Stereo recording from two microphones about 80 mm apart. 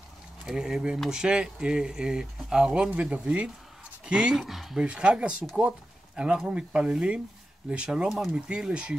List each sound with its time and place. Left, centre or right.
0.5 s speech: centre
8.1 s speech: centre